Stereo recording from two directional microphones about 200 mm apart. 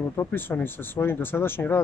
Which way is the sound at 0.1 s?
10° left (ahead or behind).